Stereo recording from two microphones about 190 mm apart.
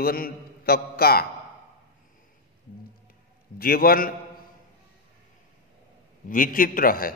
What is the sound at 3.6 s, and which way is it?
Speech, 50° left (ahead or behind).